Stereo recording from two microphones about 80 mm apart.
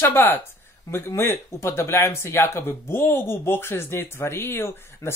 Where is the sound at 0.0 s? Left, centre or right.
Left.